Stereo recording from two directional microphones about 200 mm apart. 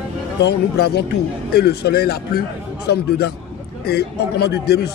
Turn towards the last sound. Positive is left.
turn(degrees=55)  # may be behind; listen again after turning